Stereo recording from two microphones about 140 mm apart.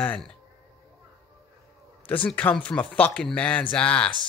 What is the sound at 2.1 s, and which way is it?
Speech, 10° left (ahead or behind).